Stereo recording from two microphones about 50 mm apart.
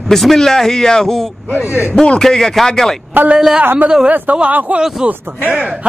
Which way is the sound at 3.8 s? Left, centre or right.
Right.